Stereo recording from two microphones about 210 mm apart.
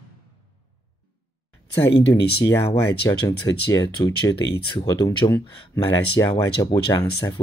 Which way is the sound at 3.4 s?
50° left (ahead or behind).